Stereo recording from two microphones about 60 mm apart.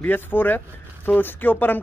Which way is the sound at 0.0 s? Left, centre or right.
Left.